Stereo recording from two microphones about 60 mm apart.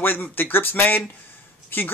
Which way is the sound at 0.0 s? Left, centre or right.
Left.